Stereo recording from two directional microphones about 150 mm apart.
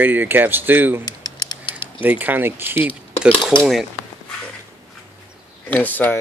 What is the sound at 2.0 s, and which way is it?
Speech, 10° right (ahead or behind).